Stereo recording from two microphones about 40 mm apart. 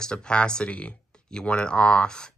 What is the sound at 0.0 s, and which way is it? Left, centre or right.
Speech, left.